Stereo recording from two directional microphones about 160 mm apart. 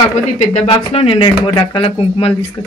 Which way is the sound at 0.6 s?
35° left (ahead or behind).